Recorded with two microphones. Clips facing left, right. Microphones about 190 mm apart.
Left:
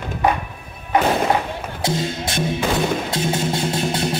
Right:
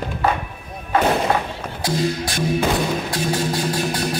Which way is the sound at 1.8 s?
25° left (ahead or behind).